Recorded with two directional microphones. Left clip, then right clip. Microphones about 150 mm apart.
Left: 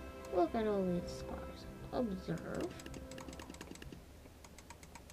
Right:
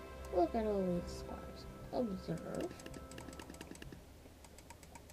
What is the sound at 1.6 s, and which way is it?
Music, 25° left (ahead or behind).